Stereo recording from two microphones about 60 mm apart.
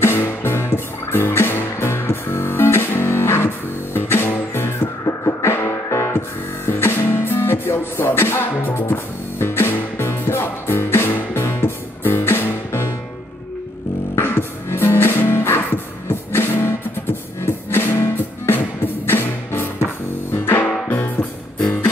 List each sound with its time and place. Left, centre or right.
0.0 s music: left
5.0 s music: left
14.1 s music: left